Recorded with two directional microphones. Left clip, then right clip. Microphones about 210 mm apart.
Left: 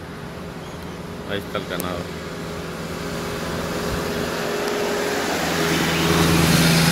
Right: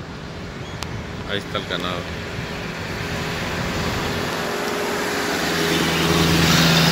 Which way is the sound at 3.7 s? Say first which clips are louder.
Right 1 dB; 50° left (ahead or behind).